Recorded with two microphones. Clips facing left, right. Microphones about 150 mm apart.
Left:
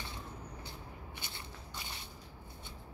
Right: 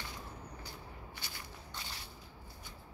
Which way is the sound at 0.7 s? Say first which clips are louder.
Left 1 dB; 25° left (ahead or behind).